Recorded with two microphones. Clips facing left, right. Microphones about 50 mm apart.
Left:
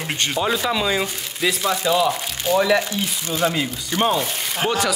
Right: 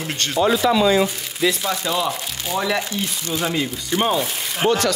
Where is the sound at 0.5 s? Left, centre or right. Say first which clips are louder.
Right 7 dB; centre.